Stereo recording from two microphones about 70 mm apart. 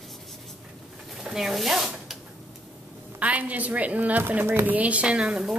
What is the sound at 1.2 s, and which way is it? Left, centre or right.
Rub, centre.